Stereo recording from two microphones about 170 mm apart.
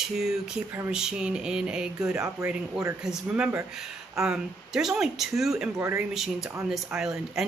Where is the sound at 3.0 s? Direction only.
5° right (ahead or behind).